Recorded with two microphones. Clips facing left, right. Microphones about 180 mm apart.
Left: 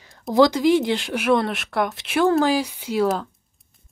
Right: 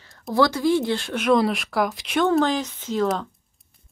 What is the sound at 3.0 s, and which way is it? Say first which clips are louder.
Speech: left 1 dB; centre (ahead or behind).